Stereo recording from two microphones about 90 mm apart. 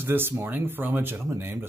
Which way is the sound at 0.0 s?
25° right (ahead or behind).